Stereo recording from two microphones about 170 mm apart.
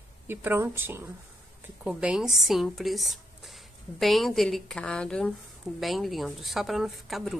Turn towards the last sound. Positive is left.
turn(degrees=0)  # may be behind; listen again after turning